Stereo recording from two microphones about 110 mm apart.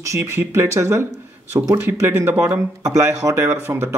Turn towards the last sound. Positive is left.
turn(degrees=-20)  # may be behind; listen again after turning